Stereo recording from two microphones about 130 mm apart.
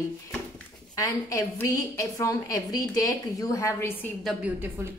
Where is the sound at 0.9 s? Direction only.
25° left (ahead or behind).